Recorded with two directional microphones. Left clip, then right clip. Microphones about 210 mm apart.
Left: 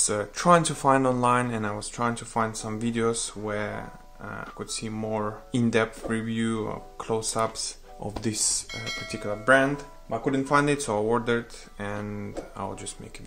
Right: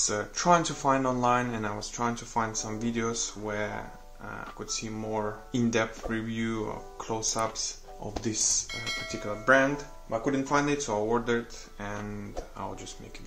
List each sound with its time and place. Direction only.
0.0 s speech: 45° left (ahead or behind)
8.6 s speech: centre (ahead or behind)
9.2 s speech: 45° left (ahead or behind)